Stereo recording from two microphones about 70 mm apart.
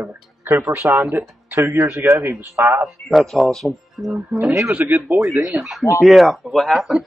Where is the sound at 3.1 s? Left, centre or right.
Centre.